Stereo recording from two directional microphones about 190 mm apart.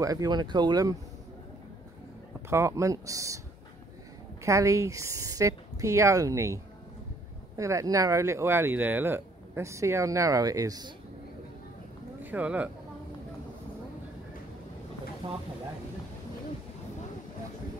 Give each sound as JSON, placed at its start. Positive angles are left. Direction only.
{"t": 0.0, "sound": "speech", "side_deg": -20}
{"t": 2.5, "sound": "speech", "side_deg": -15}
{"t": 4.5, "sound": "speech", "side_deg": -15}
{"t": 12.2, "sound": "speech", "side_deg": -10}